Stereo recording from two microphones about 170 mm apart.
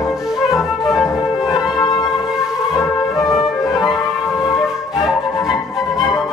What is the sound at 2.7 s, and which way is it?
Music, 20° left (ahead or behind).